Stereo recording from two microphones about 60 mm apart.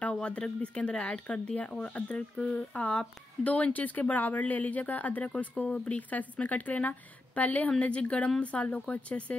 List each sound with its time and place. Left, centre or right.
0.0 s speech: left